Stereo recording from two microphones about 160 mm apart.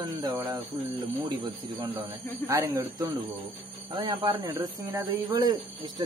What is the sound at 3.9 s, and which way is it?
Speech, 25° right (ahead or behind).